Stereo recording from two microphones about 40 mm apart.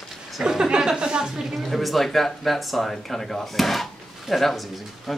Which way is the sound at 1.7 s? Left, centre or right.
Centre.